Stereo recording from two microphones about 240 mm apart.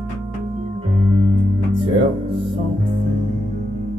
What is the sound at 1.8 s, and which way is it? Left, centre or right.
Music, right.